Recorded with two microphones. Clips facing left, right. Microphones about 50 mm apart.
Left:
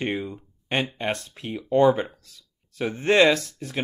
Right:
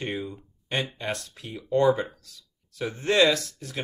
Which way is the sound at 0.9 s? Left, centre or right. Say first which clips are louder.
Left 4 dB; left.